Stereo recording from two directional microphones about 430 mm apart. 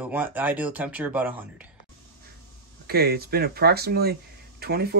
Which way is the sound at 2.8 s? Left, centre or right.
Right.